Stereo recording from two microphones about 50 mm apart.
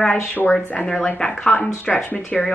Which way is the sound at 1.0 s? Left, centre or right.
Centre.